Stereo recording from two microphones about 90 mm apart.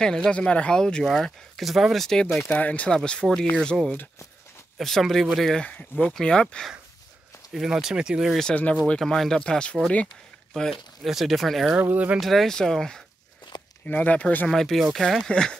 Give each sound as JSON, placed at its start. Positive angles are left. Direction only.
{"t": 0.0, "sound": "speech", "side_deg": 5}
{"t": 7.5, "sound": "speech", "side_deg": -5}
{"t": 8.4, "sound": "speech", "side_deg": 10}
{"t": 11.1, "sound": "speech", "side_deg": 0}
{"t": 11.8, "sound": "speech", "side_deg": -20}
{"t": 12.2, "sound": "speech", "side_deg": 0}
{"t": 13.5, "sound": "walk", "side_deg": 60}
{"t": 13.8, "sound": "speech", "side_deg": 15}
{"t": 14.5, "sound": "speech", "side_deg": 5}